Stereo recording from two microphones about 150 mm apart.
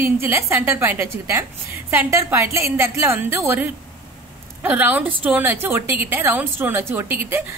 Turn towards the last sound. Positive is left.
turn(degrees=-15)  # may be behind; listen again after turning